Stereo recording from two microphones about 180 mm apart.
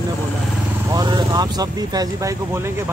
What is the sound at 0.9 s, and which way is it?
Speech, 20° right (ahead or behind).